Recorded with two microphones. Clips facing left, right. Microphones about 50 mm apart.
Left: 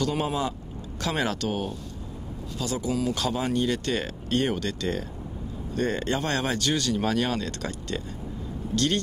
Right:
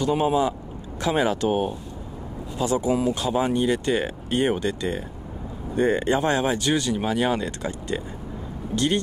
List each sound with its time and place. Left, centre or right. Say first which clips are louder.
0.0 s speech: right 6 dB; centre